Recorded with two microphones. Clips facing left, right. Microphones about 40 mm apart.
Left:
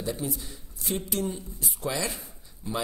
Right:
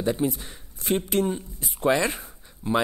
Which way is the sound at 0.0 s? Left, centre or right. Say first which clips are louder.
Right 7 dB; right.